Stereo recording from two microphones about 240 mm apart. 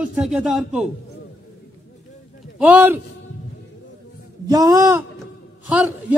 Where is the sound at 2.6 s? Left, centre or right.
Centre.